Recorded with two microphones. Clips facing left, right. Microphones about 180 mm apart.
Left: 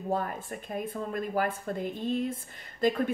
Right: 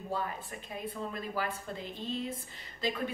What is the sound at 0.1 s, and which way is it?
Speech, 50° left (ahead or behind).